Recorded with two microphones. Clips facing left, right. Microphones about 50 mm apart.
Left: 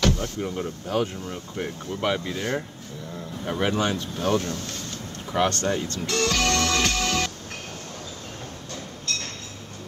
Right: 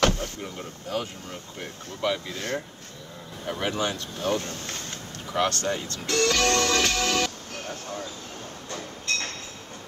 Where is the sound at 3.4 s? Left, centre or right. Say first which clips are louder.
Left 3 dB; centre.